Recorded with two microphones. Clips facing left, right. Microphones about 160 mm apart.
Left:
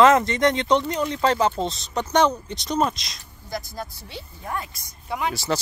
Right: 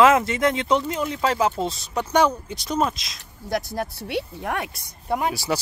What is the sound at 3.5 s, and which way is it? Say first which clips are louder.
Speech: right 6 dB; 70° right (ahead or behind).